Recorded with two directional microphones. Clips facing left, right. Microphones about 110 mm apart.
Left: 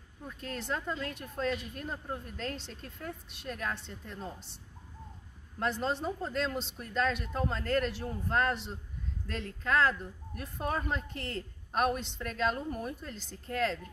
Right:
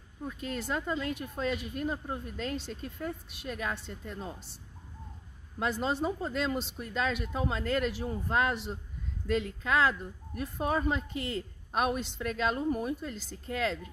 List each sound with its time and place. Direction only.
0.4 s a woman's voice: 5° right (ahead or behind)
5.6 s a woman's voice: 5° right (ahead or behind)